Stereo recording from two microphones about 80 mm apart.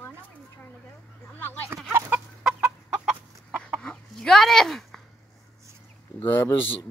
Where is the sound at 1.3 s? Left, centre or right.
Left.